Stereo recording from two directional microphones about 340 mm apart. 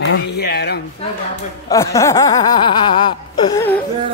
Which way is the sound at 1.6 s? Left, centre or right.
Centre.